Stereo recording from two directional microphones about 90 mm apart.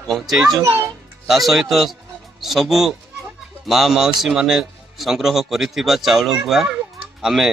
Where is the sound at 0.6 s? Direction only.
30° right (ahead or behind).